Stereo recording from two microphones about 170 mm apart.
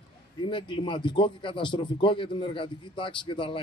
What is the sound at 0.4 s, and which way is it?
A man's voice, 30° left (ahead or behind).